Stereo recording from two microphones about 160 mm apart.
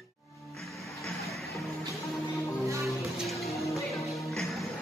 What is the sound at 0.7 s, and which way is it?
Music, centre (ahead or behind).